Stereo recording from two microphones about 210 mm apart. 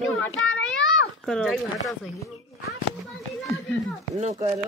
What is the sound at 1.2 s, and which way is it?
Speech, centre (ahead or behind).